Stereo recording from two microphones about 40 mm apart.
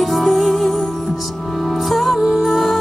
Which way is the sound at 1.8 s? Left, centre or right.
Centre.